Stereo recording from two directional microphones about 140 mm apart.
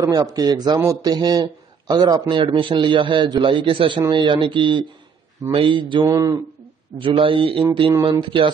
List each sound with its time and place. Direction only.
0.0 s a man's voice: 25° right (ahead or behind)
6.0 s a man's voice: 25° right (ahead or behind)
7.0 s a man's voice: 40° right (ahead or behind)